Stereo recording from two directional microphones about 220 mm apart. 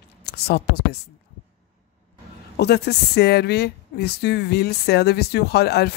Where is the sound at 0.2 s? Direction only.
50° left (ahead or behind).